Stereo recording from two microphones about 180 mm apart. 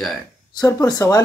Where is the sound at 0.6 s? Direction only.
20° left (ahead or behind).